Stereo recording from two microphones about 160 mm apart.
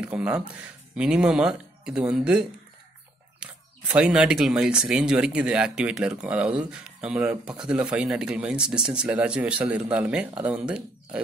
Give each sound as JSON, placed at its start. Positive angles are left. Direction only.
{"t": 0.0, "sound": "speech", "side_deg": -10}